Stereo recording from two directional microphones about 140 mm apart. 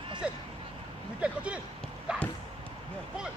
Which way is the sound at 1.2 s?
10° right (ahead or behind).